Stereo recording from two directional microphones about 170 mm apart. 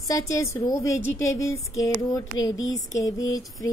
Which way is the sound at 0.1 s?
15° left (ahead or behind).